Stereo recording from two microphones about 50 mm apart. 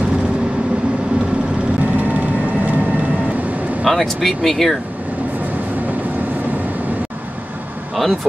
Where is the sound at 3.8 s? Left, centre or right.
Centre.